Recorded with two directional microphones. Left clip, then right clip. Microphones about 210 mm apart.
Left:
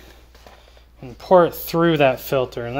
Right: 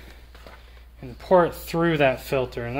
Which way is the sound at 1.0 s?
35° left (ahead or behind).